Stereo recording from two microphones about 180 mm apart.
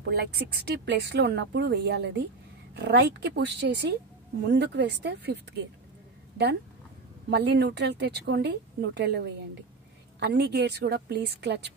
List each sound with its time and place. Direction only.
0.1 s speech: 65° right (ahead or behind)
7.2 s speech: 70° right (ahead or behind)
10.2 s speech: 65° right (ahead or behind)